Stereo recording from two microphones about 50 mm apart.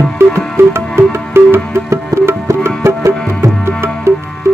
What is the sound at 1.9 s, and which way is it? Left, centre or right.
Music, right.